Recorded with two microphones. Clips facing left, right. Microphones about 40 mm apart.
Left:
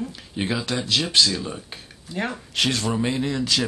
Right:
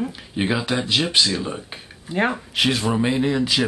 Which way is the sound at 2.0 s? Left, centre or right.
Right.